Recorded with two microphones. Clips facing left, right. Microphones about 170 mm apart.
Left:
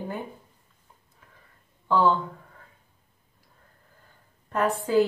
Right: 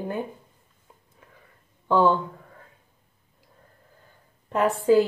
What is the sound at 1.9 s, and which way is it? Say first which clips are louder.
Speech: right 2 dB; 15° right (ahead or behind).